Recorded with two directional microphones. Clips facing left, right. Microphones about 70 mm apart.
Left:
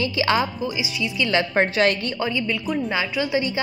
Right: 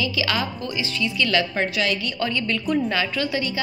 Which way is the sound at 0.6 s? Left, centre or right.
Centre.